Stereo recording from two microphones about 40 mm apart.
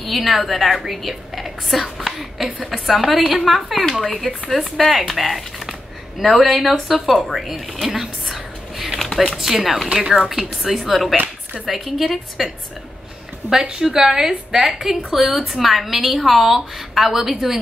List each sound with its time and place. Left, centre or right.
0.0 s a woman's voice: centre
7.7 s a sound: centre
9.4 s a woman's voice: centre
9.8 s a woman's voice: right
10.6 s a woman's voice: centre
13.5 s a woman's voice: right
13.8 s a woman's voice: centre